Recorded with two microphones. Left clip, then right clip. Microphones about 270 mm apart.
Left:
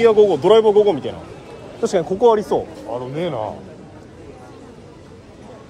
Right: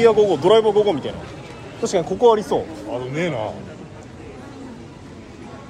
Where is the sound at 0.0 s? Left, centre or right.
Centre.